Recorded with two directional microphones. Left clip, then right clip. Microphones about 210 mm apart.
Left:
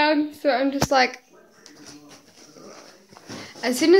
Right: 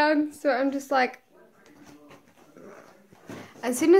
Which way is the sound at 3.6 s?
5° right (ahead or behind).